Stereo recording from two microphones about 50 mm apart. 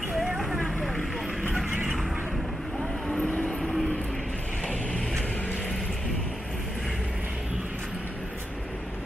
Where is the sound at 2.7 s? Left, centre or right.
Left; by 7.0 s centre.